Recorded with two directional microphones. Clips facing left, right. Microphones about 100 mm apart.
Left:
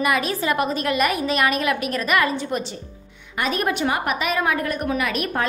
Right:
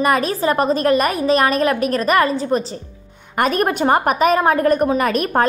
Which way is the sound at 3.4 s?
45° right (ahead or behind).